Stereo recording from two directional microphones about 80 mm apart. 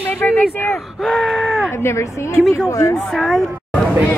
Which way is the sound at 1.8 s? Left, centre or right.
Left.